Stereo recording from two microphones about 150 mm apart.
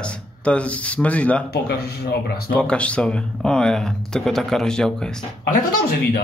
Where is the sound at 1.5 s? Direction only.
90° left.